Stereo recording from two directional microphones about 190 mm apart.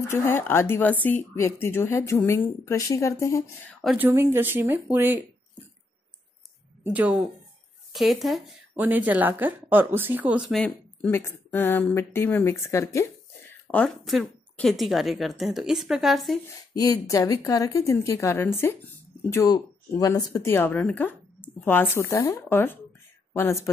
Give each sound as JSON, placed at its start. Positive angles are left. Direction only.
{"t": 0.1, "sound": "speech", "side_deg": 10}
{"t": 3.8, "sound": "a woman's voice", "side_deg": -5}
{"t": 6.8, "sound": "a woman's voice", "side_deg": -10}
{"t": 10.5, "sound": "speech", "side_deg": 0}
{"t": 11.1, "sound": "speech", "side_deg": 10}
{"t": 13.7, "sound": "a woman's voice", "side_deg": 5}
{"t": 16.7, "sound": "a woman's voice", "side_deg": 20}